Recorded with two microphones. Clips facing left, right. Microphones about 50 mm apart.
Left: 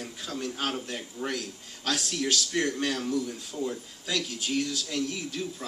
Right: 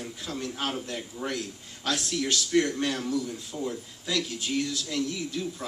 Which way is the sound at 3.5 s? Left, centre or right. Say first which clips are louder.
Left 1 dB; centre.